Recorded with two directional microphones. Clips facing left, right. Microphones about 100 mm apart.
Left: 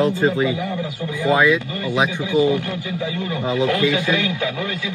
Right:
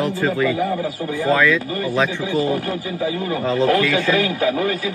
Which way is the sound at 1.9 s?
15° left (ahead or behind).